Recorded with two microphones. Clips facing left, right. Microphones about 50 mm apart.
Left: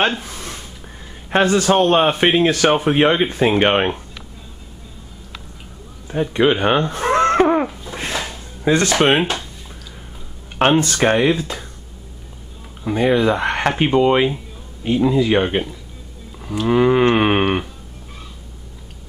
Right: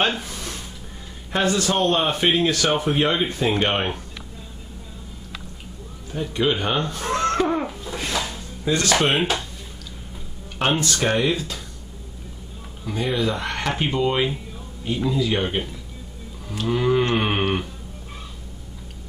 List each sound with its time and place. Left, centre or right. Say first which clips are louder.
0.2 s a sound: left 1 dB; left
1.4 s speech: left 6 dB; left
6.3 s speech: left 6 dB; left
6.9 s laughter: left 7 dB; left
7.9 s a sound: left 1 dB; left
8.6 s speech: left 6 dB; left
10.7 s speech: left 5 dB; left
12.8 s speech: left 8 dB; left
16.6 s speech: left 6 dB; left